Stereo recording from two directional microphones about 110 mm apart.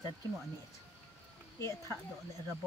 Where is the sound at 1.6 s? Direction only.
25° left (ahead or behind).